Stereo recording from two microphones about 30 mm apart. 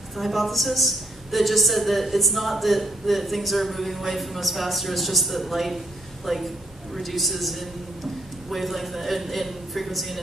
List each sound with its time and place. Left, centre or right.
0.1 s a woman's voice: centre